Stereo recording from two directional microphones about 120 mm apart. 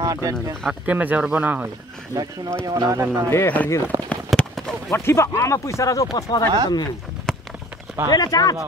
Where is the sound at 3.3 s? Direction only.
15° left (ahead or behind).